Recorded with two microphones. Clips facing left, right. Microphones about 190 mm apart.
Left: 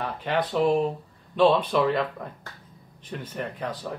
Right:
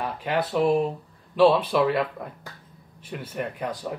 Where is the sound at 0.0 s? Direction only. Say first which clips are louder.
Even; 10° right (ahead or behind).